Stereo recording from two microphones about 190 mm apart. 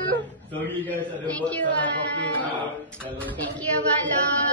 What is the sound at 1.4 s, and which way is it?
Speech, 5° left (ahead or behind).